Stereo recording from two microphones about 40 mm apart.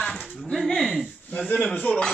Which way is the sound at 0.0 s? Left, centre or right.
Centre.